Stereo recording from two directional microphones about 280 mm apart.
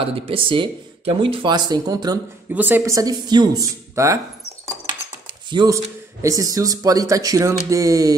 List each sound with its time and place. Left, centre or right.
0.0 s speech: centre
5.5 s speech: centre